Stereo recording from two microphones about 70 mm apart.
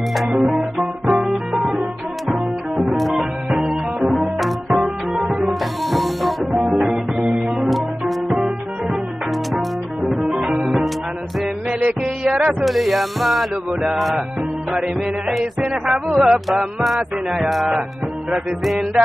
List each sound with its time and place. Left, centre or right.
0.1 s music: centre
10.5 s music: centre
11.8 s music: centre
12.6 s a sound: centre
14.7 s music: centre
15.7 s a sound: centre